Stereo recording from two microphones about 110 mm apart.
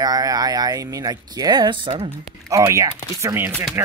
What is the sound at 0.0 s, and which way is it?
Speech, 35° right (ahead or behind).